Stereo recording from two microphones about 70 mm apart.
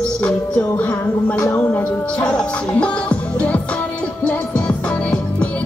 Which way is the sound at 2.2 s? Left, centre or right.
Centre.